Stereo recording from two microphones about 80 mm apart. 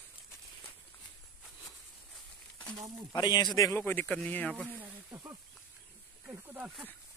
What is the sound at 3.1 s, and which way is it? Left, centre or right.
Speech, left.